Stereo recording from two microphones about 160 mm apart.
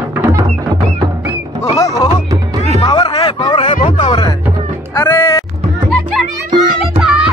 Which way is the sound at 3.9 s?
30° left (ahead or behind).